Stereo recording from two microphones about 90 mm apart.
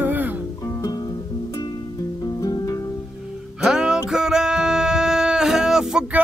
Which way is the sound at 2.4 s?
40° left (ahead or behind).